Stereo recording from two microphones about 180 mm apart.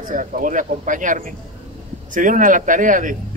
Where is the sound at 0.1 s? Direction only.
45° right (ahead or behind).